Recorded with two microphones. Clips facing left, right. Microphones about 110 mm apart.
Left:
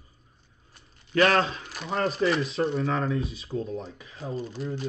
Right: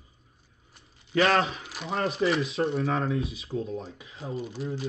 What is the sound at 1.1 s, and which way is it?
Speech, 30° right (ahead or behind).